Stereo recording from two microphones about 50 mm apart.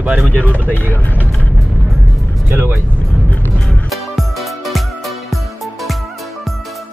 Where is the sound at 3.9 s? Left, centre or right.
Centre.